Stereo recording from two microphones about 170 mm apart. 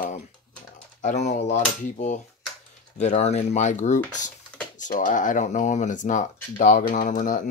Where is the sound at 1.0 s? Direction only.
45° left (ahead or behind).